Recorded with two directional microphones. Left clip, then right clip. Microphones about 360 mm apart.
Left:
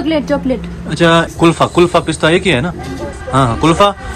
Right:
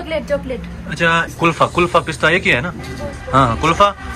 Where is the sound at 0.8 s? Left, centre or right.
Centre.